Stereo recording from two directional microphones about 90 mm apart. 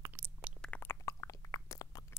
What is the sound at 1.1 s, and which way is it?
Chewing, 40° left (ahead or behind).